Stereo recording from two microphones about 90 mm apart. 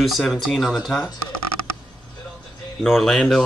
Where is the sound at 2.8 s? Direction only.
Centre (ahead or behind).